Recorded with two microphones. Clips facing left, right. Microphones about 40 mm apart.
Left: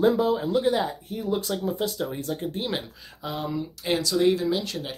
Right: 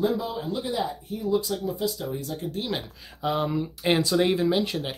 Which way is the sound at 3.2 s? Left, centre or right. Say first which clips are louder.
Right 4 dB; centre.